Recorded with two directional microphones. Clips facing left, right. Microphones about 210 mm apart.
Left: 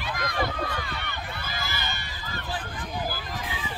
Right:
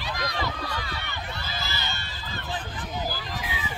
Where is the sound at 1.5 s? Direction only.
15° left (ahead or behind).